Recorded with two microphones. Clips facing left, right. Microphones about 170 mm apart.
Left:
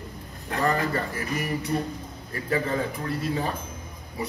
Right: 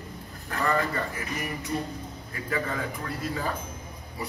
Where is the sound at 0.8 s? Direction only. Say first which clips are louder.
Left 3 dB; 35° left (ahead or behind).